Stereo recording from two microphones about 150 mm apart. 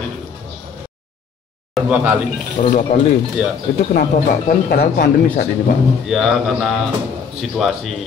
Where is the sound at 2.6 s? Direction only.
60° left (ahead or behind).